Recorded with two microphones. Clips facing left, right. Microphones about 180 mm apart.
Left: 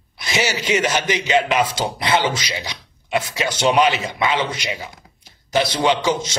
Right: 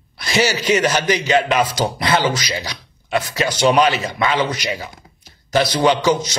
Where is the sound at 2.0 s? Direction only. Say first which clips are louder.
Even; 25° left (ahead or behind).